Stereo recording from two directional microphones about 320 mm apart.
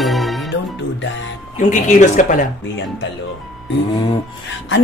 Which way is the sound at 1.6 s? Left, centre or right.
Left.